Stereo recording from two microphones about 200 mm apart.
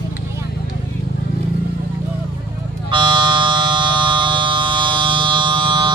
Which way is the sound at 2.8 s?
25° right (ahead or behind).